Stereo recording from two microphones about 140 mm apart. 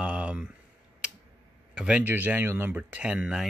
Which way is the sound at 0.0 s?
10° right (ahead or behind).